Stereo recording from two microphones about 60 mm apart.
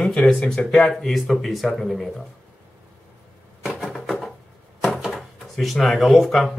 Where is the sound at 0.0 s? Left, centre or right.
Centre.